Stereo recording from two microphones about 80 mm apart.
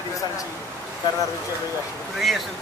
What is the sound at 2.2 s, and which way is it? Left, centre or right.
Speech, centre.